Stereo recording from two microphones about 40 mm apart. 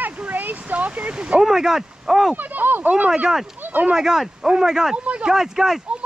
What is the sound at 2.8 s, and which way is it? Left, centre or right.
Speech, right.